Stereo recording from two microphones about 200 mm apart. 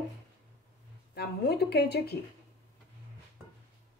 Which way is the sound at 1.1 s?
55° left (ahead or behind).